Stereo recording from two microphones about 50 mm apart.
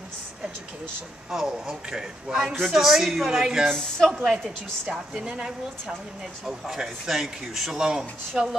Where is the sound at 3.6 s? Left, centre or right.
Centre.